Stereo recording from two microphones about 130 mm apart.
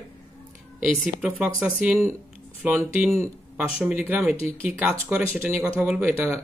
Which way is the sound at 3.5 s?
10° right (ahead or behind).